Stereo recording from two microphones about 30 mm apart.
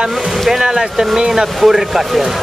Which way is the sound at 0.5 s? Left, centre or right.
Right.